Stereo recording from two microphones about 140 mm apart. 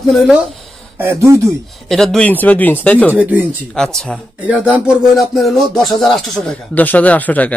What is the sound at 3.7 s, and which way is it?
Speech, 5° left (ahead or behind).